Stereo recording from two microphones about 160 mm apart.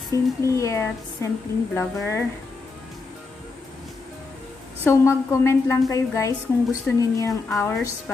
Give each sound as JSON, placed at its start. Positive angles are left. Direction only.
{"t": 0.1, "sound": "a woman's voice", "side_deg": 20}
{"t": 4.8, "sound": "a woman's voice", "side_deg": 20}